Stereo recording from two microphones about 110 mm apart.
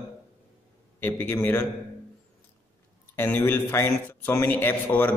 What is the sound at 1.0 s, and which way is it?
Speech, 15° left (ahead or behind).